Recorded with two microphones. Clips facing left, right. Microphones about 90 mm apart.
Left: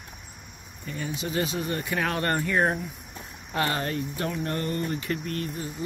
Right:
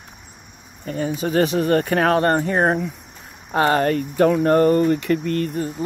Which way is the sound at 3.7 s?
60° right (ahead or behind).